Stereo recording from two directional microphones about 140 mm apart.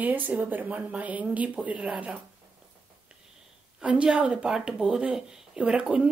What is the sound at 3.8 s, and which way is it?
Speech, 5° right (ahead or behind).